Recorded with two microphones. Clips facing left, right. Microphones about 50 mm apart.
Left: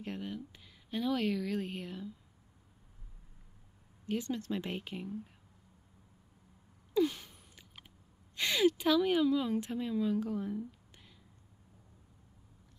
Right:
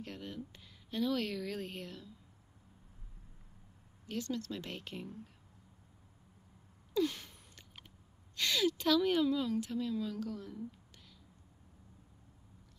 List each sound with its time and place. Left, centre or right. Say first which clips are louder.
0.0 s speech: left 4 dB; centre
4.1 s speech: left 4 dB; left
6.9 s a sound: left 3 dB; centre
8.4 s speech: left 4 dB; left
9.5 s a woman's voice: left 1 dB; left